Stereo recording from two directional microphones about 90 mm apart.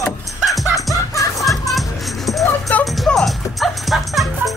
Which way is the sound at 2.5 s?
15° left (ahead or behind).